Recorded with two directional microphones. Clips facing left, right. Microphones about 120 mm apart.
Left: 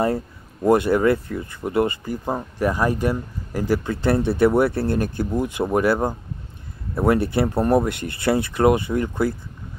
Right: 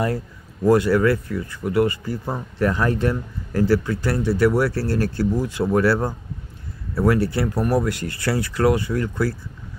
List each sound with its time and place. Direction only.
0.7 s speech: 20° left (ahead or behind)